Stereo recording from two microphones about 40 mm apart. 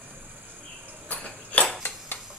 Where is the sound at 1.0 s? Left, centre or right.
Left.